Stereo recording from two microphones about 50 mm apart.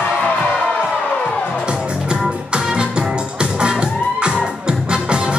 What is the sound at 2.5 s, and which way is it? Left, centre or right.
Music, centre.